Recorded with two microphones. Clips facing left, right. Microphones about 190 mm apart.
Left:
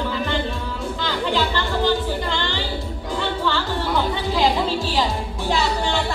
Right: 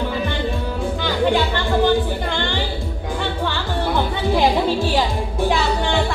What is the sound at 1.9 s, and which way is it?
Music, 55° right (ahead or behind).